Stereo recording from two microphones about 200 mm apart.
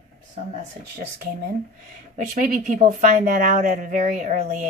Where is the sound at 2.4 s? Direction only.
40° right (ahead or behind).